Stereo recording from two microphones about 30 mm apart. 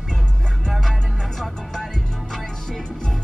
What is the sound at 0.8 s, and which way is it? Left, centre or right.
Music, centre.